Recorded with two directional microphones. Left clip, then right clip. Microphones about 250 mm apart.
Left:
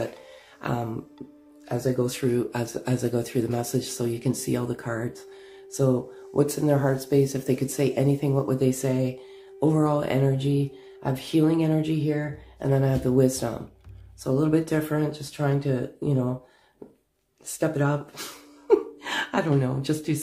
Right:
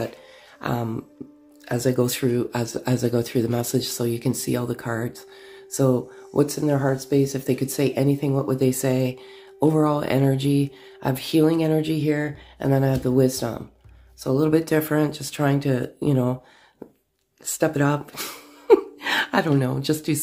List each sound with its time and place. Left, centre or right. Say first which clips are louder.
0.6 s a sound: right 3 dB; right
1.7 s speech: right 4 dB; right
17.6 s speech: right 4 dB; right